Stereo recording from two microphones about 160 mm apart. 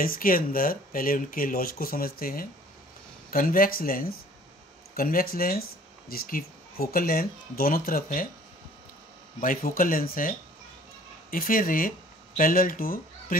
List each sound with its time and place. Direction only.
0.0 s speech: 65° left (ahead or behind)
9.4 s speech: 60° left (ahead or behind)